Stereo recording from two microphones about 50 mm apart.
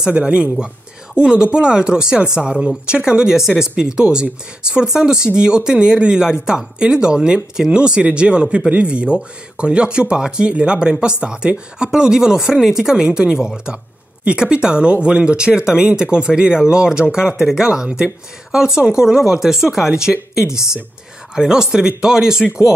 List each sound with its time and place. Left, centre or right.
0.1 s speech: right